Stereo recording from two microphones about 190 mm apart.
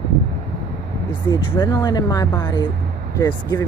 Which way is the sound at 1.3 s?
20° left (ahead or behind).